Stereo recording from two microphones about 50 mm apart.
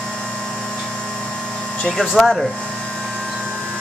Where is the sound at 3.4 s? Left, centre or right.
Right.